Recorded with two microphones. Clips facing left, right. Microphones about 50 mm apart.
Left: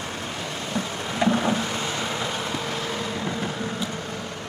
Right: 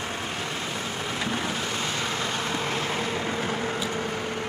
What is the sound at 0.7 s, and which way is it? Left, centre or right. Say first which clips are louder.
Vehicle: left 2 dB; centre.